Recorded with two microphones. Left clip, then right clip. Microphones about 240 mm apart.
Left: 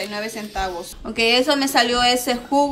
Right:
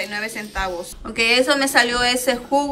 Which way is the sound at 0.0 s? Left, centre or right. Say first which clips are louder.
Right 1 dB; centre.